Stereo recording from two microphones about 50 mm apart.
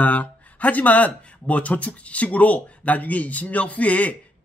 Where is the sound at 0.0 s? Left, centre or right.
Left.